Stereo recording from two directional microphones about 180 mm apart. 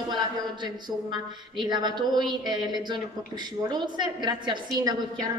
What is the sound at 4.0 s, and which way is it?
Speech, 25° right (ahead or behind).